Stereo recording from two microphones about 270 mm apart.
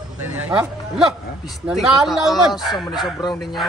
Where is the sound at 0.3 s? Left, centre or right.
Centre.